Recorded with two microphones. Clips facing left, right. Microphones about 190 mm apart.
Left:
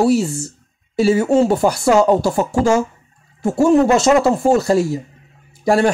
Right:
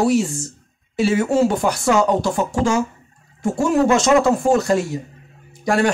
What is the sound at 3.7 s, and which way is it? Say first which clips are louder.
Speech: left 1 dB; 35° left (ahead or behind).